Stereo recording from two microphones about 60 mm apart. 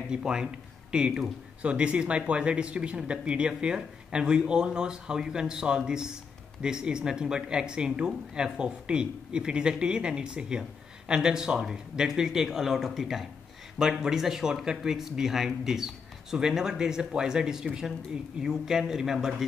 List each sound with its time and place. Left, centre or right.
0.1 s speech: centre